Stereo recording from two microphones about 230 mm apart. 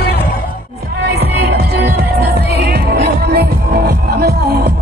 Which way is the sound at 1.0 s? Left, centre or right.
Right.